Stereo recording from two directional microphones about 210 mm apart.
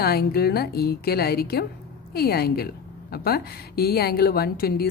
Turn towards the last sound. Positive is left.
turn(degrees=45)  # may be behind; listen again after turning